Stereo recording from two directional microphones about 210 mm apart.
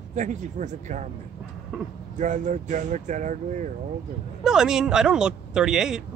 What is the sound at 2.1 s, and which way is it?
Speech, 35° right (ahead or behind).